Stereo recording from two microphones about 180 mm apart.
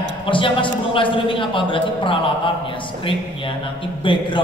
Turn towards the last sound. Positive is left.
turn(degrees=25)  # may be behind; listen again after turning